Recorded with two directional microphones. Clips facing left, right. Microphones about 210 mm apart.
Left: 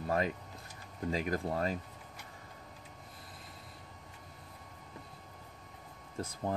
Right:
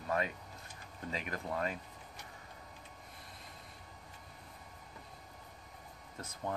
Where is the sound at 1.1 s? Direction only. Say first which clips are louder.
Left 5 dB; 35° left (ahead or behind).